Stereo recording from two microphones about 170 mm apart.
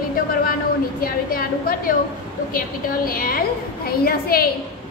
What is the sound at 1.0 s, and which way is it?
Speech, 60° left (ahead or behind).